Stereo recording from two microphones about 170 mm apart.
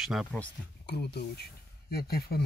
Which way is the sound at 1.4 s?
65° left (ahead or behind).